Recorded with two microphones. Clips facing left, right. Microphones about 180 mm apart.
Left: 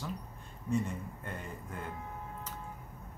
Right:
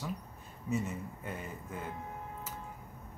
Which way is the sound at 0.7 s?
5° right (ahead or behind).